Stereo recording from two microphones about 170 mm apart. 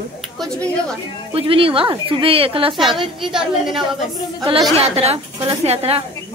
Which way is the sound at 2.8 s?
Centre (ahead or behind).